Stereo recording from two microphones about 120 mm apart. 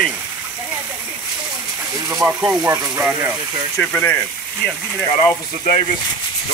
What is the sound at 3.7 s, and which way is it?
Speech, 15° left (ahead or behind).